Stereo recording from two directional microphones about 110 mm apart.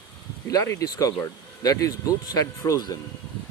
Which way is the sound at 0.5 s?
30° left (ahead or behind).